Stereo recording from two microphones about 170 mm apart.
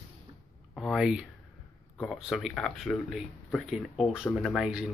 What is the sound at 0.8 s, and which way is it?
Speech, 5° right (ahead or behind).